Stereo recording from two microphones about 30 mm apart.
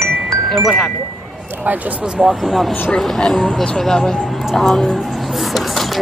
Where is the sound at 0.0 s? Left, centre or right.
Centre.